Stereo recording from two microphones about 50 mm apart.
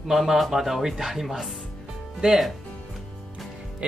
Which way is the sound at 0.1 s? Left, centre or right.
Centre.